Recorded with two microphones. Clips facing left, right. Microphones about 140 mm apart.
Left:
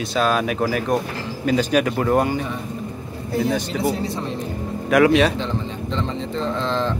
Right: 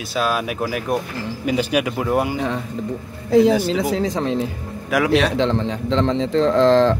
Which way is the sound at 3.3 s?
90° right.